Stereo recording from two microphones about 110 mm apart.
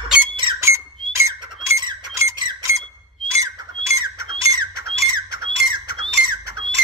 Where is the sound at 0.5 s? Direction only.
25° right (ahead or behind).